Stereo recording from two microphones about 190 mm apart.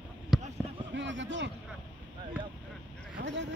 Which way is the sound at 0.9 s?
70° right (ahead or behind).